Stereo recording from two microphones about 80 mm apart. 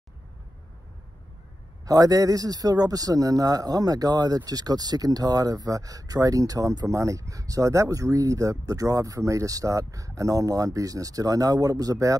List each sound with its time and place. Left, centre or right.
1.9 s speech: right